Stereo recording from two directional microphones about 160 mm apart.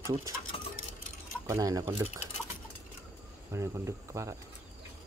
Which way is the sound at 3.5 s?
20° right (ahead or behind).